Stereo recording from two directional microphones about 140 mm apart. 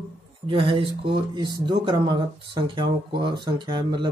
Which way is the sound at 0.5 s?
40° right (ahead or behind).